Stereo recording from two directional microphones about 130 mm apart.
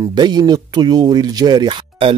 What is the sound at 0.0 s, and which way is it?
Speech, 35° right (ahead or behind).